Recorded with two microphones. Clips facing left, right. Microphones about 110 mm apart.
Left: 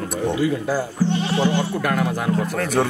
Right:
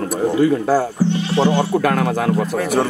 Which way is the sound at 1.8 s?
75° right (ahead or behind).